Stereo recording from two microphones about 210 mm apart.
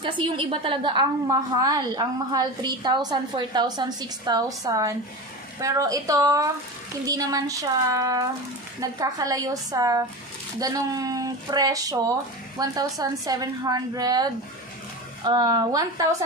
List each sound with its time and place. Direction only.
0.4 s a woman's voice: 25° right (ahead or behind)